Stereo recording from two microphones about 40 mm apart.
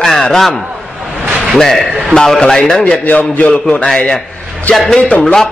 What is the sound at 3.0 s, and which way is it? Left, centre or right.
A man's voice, left.